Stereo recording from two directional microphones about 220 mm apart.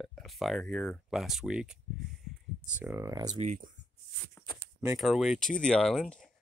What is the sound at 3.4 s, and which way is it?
Speech, 35° right (ahead or behind).